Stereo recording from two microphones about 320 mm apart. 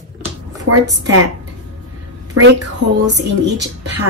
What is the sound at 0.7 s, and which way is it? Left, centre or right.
Speech, right.